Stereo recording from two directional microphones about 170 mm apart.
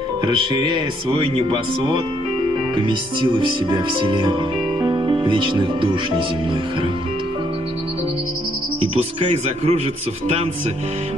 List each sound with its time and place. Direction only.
0.4 s music: 30° right (ahead or behind)
4.8 s speech: 30° right (ahead or behind)
8.9 s a man's voice: 35° right (ahead or behind)